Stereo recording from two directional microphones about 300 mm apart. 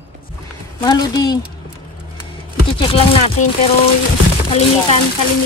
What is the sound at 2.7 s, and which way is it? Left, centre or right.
Music, centre.